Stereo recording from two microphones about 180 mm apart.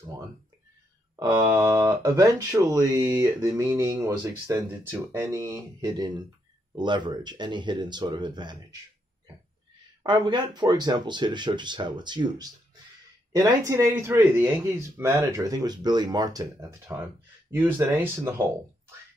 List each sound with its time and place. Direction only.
1.2 s speech: 15° right (ahead or behind)
10.0 s speech: 25° right (ahead or behind)